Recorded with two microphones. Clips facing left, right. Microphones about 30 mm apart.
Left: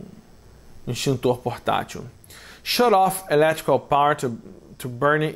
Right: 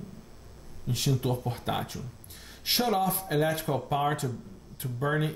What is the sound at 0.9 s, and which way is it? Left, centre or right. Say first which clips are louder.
Speech: left 8 dB; left.